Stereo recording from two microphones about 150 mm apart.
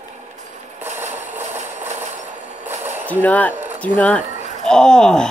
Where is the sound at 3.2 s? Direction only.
10° left (ahead or behind).